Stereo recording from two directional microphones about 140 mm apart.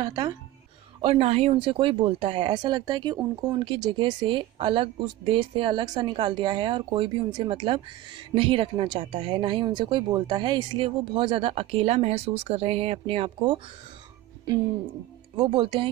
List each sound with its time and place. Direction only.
0.0 s speech: 30° right (ahead or behind)
1.0 s speech: 45° right (ahead or behind)
15.3 s speech: 35° right (ahead or behind)